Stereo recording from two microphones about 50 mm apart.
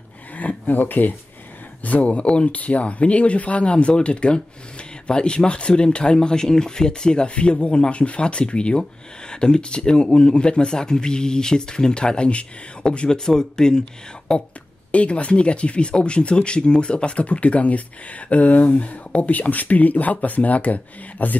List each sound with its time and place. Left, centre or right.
0.4 s speech: left
1.9 s a man's voice: left
14.9 s speech: left